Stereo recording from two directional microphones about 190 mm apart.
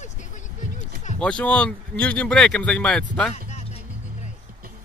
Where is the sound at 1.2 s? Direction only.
5° left (ahead or behind).